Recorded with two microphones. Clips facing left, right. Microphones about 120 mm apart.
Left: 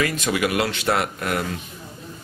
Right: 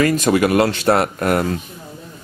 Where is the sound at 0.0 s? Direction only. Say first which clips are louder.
Right 7 dB; 40° right (ahead or behind).